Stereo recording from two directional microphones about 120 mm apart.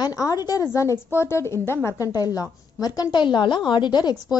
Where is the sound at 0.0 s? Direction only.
30° left (ahead or behind).